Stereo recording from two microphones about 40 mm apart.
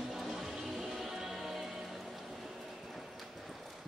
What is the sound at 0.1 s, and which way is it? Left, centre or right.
Music, centre.